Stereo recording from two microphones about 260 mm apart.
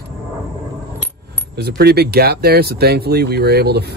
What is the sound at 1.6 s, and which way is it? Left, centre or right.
Speech, right.